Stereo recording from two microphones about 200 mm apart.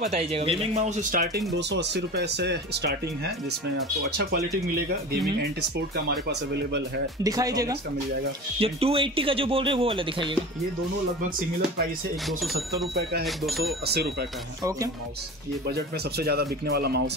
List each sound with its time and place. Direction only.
0.0 s speech: 30° right (ahead or behind)
1.5 s speech: 60° right (ahead or behind)
5.4 s speech: 55° right (ahead or behind)
7.2 s speech: 20° right (ahead or behind)
8.5 s speech: 30° right (ahead or behind)
11.2 s speech: 45° right (ahead or behind)
13.2 s speech: centre (ahead or behind)
15.7 s speech: 50° right (ahead or behind)